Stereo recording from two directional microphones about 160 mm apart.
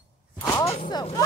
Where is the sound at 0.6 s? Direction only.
40° left (ahead or behind).